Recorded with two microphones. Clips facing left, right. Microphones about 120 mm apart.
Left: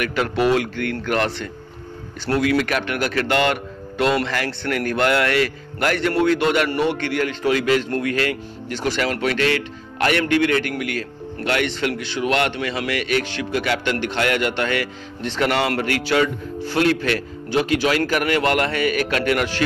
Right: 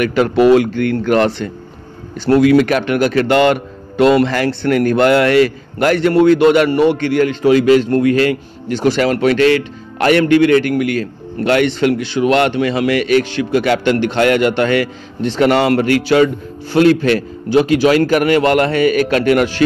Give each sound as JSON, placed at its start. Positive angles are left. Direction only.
{"t": 0.0, "sound": "a man's voice", "side_deg": -25}